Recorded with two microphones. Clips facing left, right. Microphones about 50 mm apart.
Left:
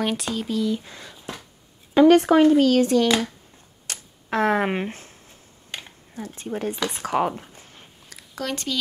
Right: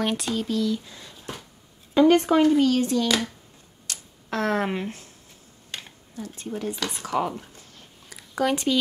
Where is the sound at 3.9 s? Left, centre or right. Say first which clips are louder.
Left 2 dB; left.